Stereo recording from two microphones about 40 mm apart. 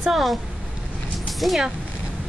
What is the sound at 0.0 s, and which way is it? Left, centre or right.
Speech, centre.